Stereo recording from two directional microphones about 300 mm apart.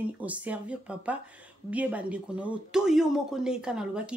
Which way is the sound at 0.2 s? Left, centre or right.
Centre.